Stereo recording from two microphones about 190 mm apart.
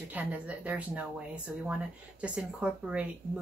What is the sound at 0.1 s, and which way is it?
Speech, 10° right (ahead or behind).